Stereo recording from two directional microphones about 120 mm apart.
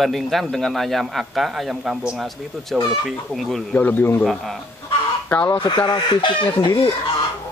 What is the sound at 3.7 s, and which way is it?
Speech, 15° left (ahead or behind).